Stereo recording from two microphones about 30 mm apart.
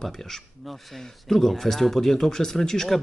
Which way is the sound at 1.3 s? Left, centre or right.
Centre.